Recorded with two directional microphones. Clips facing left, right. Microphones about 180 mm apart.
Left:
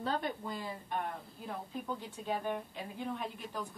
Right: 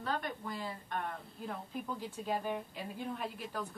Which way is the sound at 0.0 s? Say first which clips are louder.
Left 2 dB; 25° left (ahead or behind).